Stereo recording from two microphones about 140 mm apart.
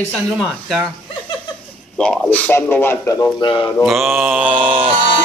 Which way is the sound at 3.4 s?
35° left (ahead or behind).